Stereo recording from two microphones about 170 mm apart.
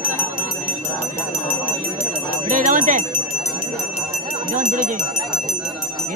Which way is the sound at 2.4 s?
50° right (ahead or behind).